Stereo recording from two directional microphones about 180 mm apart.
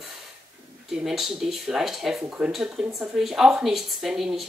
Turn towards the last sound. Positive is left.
turn(degrees=0)  # may be behind; listen again after turning